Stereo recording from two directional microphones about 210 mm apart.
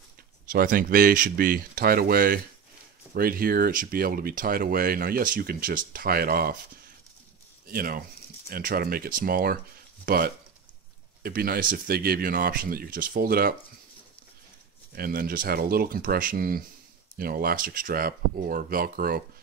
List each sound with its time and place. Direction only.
0.5 s speech: 40° right (ahead or behind)
7.6 s speech: 45° right (ahead or behind)
14.9 s speech: 45° right (ahead or behind)